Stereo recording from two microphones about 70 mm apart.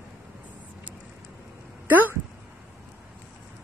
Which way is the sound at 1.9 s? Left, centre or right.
Right.